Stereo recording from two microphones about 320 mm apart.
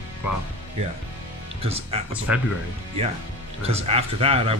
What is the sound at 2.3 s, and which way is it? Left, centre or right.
Speech, centre.